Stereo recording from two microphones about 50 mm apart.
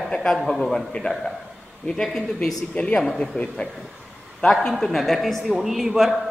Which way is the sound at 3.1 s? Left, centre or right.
Centre.